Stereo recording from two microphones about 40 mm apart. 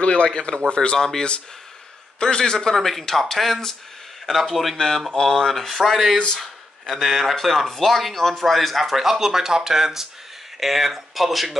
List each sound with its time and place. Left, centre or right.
0.0 s a man's voice: left; by 3.7 s centre
4.7 s a man's voice: centre